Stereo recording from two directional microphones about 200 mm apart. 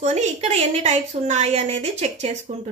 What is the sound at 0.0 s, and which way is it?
A child's voice, 35° right (ahead or behind).